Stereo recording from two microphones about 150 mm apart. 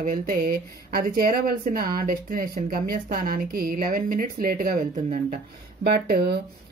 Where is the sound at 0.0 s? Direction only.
65° right (ahead or behind).